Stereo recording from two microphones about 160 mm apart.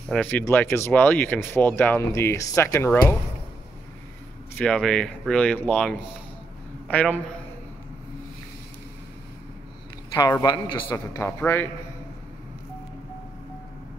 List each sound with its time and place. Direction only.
0.1 s speech: 10° left (ahead or behind)
4.6 s speech: 5° left (ahead or behind)
10.4 s a man's voice: 30° left (ahead or behind)
10.9 s speech: 15° left (ahead or behind)